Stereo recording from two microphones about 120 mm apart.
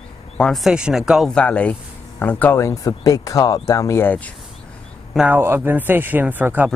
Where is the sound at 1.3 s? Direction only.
10° left (ahead or behind).